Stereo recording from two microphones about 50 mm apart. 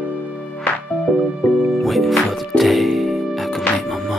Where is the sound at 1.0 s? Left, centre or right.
Centre.